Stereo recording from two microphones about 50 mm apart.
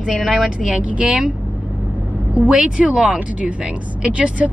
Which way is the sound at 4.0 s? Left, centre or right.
Right.